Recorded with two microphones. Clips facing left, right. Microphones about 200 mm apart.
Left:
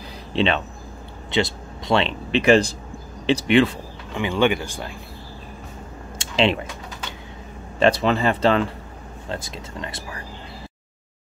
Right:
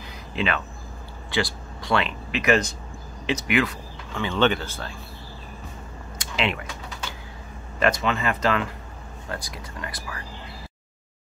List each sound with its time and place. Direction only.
0.3 s speech: 30° left (ahead or behind)
4.1 s speech: 15° left (ahead or behind)
6.1 s a sound: 30° left (ahead or behind)
7.8 s speech: 35° left (ahead or behind)